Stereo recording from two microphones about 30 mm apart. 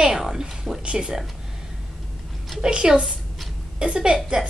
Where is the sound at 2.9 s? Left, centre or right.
Right.